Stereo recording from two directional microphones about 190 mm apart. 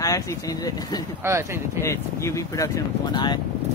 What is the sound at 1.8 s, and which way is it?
Speech, 15° left (ahead or behind).